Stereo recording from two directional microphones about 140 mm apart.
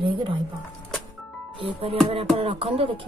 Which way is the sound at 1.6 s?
40° right (ahead or behind).